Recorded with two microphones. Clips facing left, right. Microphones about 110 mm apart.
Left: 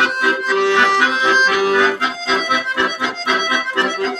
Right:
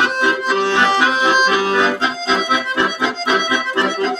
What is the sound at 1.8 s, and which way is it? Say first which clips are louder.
Accordion: even; 25° right (ahead or behind).